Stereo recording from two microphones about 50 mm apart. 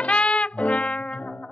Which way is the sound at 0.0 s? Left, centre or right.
Centre.